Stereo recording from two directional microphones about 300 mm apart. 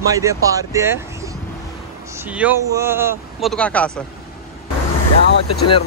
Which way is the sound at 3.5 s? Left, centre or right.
Centre.